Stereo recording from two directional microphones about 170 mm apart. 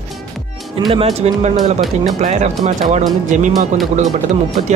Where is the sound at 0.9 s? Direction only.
35° right (ahead or behind).